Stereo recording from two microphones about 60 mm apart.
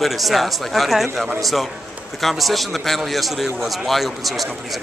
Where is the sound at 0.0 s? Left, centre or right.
Centre.